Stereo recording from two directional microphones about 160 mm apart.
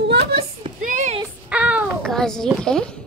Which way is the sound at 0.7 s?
50° right (ahead or behind).